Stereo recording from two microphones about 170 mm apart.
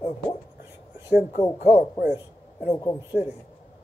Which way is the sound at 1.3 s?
40° left (ahead or behind).